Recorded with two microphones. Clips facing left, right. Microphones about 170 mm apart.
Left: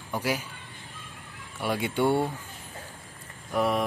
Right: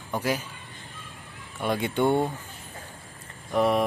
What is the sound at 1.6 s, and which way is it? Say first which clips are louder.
Speech: right 2 dB; 10° left (ahead or behind).